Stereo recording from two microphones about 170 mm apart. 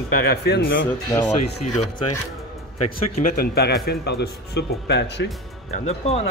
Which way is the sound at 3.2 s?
65° left (ahead or behind).